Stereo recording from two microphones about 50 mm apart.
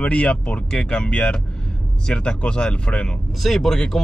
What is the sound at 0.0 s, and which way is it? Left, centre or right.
Speech, left.